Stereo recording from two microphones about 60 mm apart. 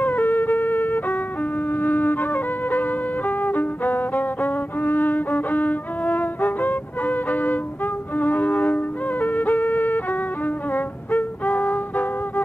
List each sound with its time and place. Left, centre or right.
0.0 s music: left